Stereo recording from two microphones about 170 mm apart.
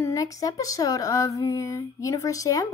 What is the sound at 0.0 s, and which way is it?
Speech, 20° left (ahead or behind).